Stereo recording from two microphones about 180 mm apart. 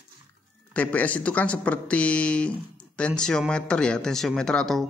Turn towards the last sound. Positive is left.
turn(degrees=5)  # may be behind; listen again after turning